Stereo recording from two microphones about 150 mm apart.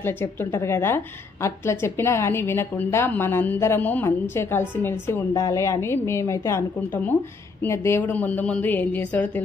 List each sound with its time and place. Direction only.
0.0 s a woman's voice: 15° left (ahead or behind)